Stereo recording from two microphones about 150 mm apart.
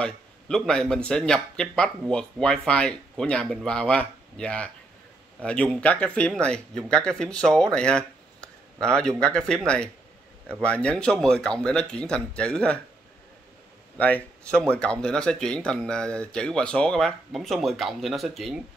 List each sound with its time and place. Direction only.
0.0 s a man's voice: 5° left (ahead or behind)
10.6 s speech: 10° left (ahead or behind)
13.9 s a man's voice: 10° left (ahead or behind)